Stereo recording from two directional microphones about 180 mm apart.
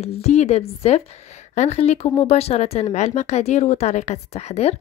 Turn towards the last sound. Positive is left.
turn(degrees=35)  # may be behind; listen again after turning